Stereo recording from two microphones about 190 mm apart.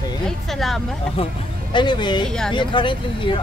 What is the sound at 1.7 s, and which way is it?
Speech, 25° left (ahead or behind).